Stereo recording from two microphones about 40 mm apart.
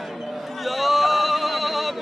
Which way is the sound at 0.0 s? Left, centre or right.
Centre.